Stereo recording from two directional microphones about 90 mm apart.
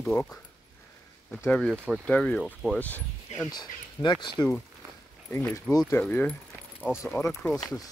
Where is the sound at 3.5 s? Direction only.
55° left (ahead or behind).